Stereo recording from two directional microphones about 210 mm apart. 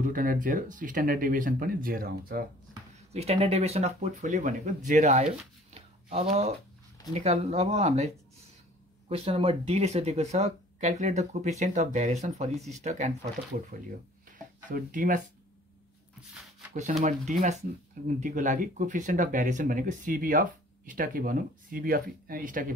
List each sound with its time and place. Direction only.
0.0 s speech: 40° right (ahead or behind)
3.1 s speech: 30° right (ahead or behind)
5.7 s a sound: 30° right (ahead or behind)
7.2 s speech: 30° right (ahead or behind)
9.1 s speech: 30° right (ahead or behind)
14.7 s speech: 40° right (ahead or behind)
17.0 s speech: 35° right (ahead or behind)